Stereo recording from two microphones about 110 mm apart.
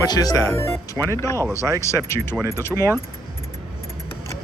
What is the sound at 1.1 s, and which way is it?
Speech, 25° left (ahead or behind).